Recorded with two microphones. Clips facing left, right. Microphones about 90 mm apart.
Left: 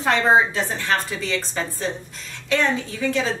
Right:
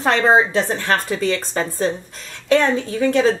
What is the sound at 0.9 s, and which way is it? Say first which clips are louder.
Speech: right 4 dB; 45° right (ahead or behind).